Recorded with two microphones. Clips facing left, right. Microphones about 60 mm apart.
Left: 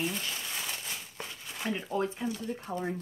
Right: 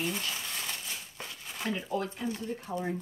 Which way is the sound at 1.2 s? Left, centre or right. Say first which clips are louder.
Right 1 dB; centre.